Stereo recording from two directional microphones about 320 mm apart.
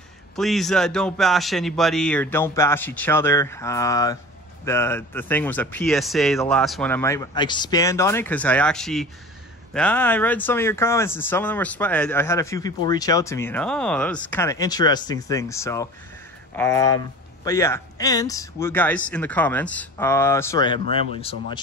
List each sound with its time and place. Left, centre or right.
0.4 s speech: centre